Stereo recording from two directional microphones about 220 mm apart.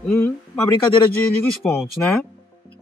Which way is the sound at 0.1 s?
10° left (ahead or behind).